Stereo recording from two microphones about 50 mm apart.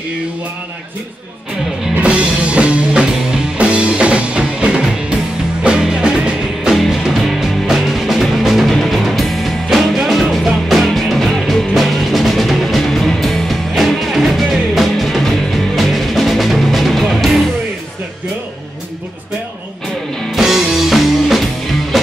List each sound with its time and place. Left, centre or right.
2.0 s music: right
6.7 s music: centre
20.3 s music: centre